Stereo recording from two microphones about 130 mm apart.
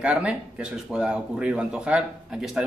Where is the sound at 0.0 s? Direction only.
10° right (ahead or behind).